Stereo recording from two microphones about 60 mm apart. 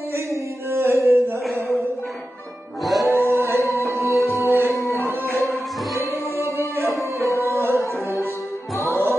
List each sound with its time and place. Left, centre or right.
0.1 s a sound: right
2.8 s music: centre
3.1 s singing: right
4.1 s music: left
5.5 s music: right
7.2 s music: left
7.5 s music: right
8.7 s music: left